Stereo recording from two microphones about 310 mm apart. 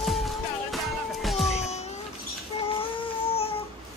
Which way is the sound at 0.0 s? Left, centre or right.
Centre.